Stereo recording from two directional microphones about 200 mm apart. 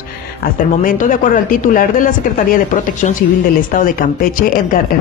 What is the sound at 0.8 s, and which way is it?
A woman's voice, 40° left (ahead or behind).